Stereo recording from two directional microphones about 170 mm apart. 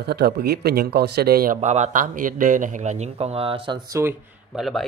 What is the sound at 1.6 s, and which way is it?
Speech, 45° right (ahead or behind).